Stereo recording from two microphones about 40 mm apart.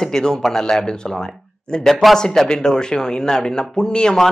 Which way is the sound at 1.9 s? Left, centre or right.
Centre.